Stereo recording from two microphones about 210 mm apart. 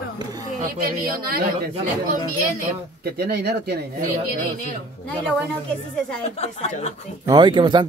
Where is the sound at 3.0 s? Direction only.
50° right (ahead or behind).